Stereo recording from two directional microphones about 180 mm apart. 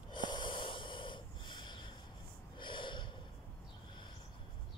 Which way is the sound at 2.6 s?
25° left (ahead or behind).